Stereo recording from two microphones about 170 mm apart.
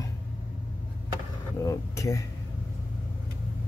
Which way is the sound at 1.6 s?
20° left (ahead or behind).